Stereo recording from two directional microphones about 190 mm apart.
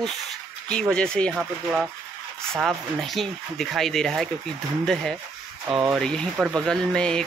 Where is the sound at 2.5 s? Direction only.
Centre (ahead or behind).